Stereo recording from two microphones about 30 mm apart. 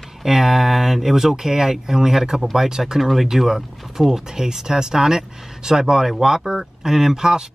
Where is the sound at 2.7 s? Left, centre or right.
Centre.